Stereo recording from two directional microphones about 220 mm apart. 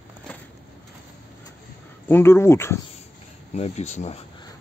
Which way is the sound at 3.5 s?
30° left (ahead or behind).